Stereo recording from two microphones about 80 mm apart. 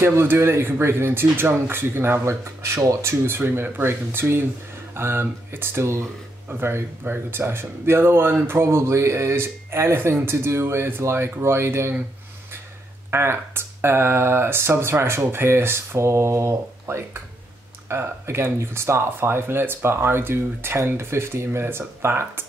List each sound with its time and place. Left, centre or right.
0.0 s speech: right
13.1 s speech: right